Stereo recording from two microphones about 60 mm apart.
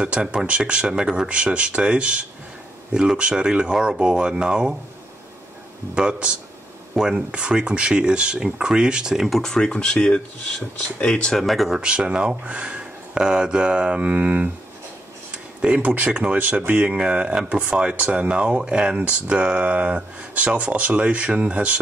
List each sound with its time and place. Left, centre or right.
0.0 s speech: centre
5.9 s speech: centre
9.4 s speech: centre
11.3 s speech: centre
11.8 s speech: centre
18.9 s speech: right